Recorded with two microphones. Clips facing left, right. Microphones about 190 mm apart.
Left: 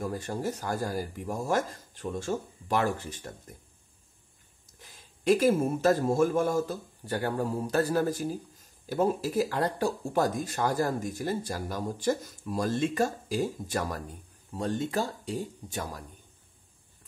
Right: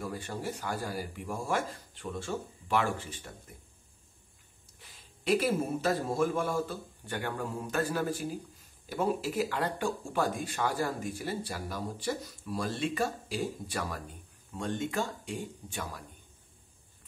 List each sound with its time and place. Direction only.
0.0 s a man's voice: 45° left (ahead or behind)
4.7 s a man's voice: 45° left (ahead or behind)